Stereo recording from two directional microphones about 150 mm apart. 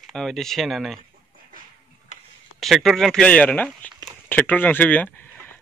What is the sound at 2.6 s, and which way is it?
Speech, centre (ahead or behind).